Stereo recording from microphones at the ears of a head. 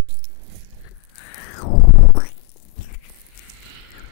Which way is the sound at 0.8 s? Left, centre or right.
Left.